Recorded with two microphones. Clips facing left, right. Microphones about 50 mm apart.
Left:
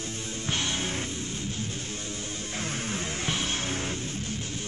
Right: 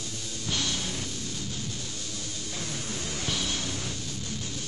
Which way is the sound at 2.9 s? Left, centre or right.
Left.